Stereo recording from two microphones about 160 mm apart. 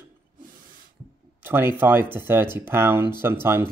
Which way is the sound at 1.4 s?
15° right (ahead or behind).